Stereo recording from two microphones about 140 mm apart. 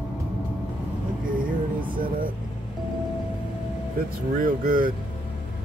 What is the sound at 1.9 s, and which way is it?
Music, 90° right.